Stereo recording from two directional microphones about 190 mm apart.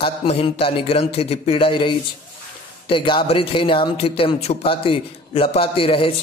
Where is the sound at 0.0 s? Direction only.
30° left (ahead or behind).